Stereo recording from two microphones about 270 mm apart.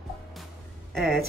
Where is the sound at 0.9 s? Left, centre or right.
Centre.